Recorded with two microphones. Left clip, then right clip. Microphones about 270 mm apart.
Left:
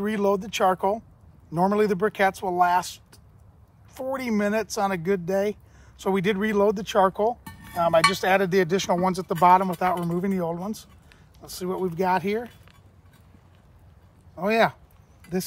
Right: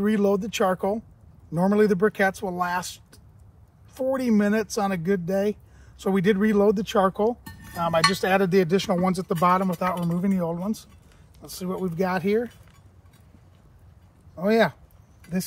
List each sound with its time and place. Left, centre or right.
0.0 s speech: left
14.3 s speech: centre